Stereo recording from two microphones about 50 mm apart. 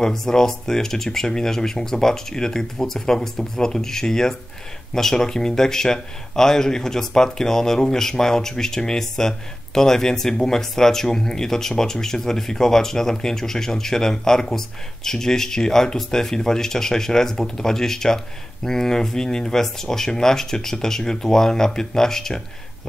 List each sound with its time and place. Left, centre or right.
0.0 s speech: centre